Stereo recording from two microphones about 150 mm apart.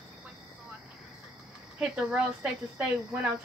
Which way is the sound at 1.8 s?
5° right (ahead or behind).